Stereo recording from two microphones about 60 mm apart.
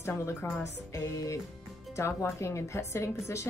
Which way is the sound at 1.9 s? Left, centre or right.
Left.